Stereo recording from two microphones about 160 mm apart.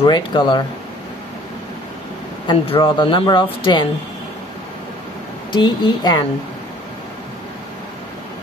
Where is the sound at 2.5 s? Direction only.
30° left (ahead or behind).